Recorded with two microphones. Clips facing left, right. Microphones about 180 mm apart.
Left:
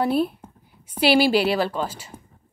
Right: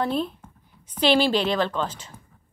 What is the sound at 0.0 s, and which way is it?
A woman's voice, 10° left (ahead or behind).